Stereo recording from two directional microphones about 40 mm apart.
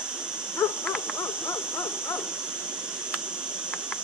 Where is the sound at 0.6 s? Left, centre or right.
Left.